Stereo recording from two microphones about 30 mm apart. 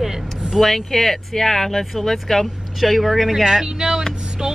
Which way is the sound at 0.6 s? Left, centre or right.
Centre.